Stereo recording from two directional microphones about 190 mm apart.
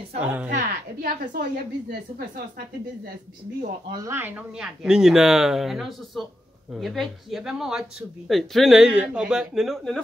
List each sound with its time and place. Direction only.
0.2 s a woman's voice: 10° right (ahead or behind)
0.5 s a woman's voice: 45° right (ahead or behind)
1.9 s speech: 55° right (ahead or behind)
3.9 s speech: 15° right (ahead or behind); by 10.0 s centre (ahead or behind)